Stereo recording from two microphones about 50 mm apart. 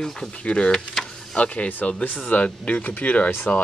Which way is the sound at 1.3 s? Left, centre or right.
Left.